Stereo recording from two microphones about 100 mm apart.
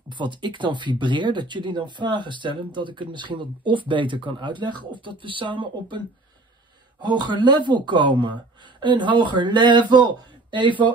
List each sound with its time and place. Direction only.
0.1 s speech: 50° right (ahead or behind)